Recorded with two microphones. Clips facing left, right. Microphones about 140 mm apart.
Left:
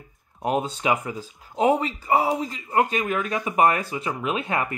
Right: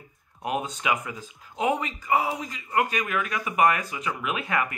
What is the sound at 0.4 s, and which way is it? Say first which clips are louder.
Speech: left 5 dB; 30° left (ahead or behind).